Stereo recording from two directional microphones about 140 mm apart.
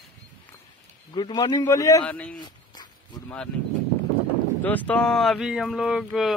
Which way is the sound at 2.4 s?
30° left (ahead or behind).